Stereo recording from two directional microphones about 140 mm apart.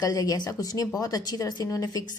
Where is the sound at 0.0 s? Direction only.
25° left (ahead or behind).